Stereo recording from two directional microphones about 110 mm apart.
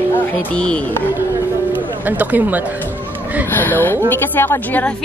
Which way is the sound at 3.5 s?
20° left (ahead or behind).